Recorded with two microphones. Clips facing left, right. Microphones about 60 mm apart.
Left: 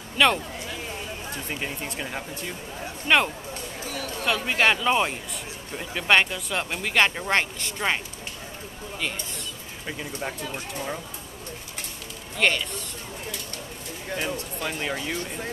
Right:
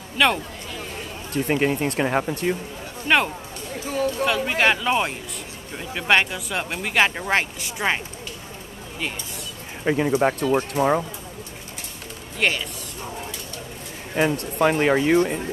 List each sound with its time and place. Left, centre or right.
0.2 s speech: centre
1.5 s speech: right
3.1 s speech: centre
4.3 s speech: centre
9.8 s speech: right
12.4 s speech: centre
14.1 s speech: right